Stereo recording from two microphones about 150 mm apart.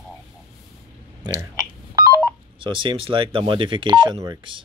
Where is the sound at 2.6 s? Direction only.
35° right (ahead or behind).